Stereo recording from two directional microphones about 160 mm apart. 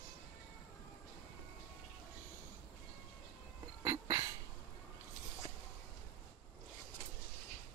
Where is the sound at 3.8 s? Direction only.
20° right (ahead or behind).